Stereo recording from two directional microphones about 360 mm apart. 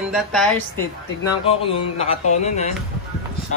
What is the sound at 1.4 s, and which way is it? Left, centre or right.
Speech, centre.